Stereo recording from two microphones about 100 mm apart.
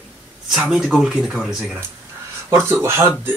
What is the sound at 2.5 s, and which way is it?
Speech, 25° right (ahead or behind).